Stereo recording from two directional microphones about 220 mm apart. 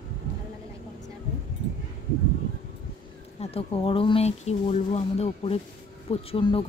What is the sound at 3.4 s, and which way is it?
Speech, 25° left (ahead or behind).